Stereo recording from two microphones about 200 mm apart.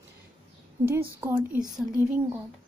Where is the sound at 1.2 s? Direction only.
10° right (ahead or behind).